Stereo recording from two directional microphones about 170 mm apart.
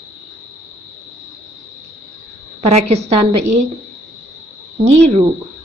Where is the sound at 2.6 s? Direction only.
40° right (ahead or behind).